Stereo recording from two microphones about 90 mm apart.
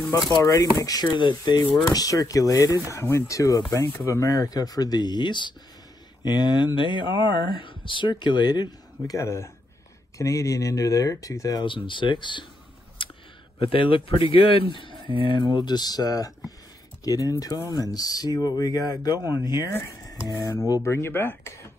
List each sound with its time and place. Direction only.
0.4 s speech: 45° left (ahead or behind)
1.9 s speech: 40° left (ahead or behind)
11.6 s speech: 65° left (ahead or behind)
13.0 s clicking: 70° left (ahead or behind)
13.6 s a man's voice: 75° left (ahead or behind); by 20.8 s 45° left (ahead or behind)
20.8 s speech: 30° left (ahead or behind)